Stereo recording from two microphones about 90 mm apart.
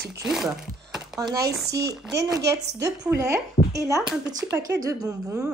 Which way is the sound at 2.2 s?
40° right (ahead or behind).